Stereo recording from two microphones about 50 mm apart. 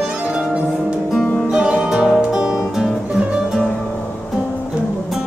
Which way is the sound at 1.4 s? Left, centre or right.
Right.